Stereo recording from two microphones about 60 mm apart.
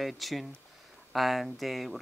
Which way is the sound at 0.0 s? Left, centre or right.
Centre.